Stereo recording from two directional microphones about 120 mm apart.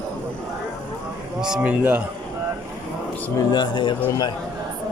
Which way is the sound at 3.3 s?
35° left (ahead or behind).